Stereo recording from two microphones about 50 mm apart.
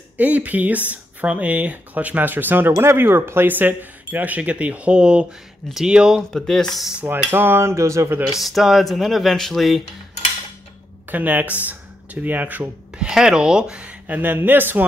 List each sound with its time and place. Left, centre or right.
0.2 s speech: right
3.5 s speech: right; by 6.2 s centre
6.3 s speech: centre
7.1 s a sound: right
7.6 s a sound: right
8.3 s speech: centre
11.1 s speech: right
13.1 s speech: centre
14.0 s speech: right